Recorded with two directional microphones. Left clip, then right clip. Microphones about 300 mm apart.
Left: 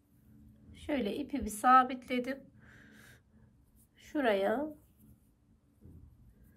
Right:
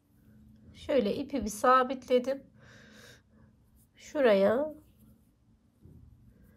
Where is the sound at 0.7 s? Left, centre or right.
Centre.